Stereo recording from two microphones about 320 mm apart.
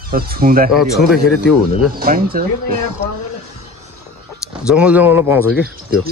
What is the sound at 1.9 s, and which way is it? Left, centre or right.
Speech, right.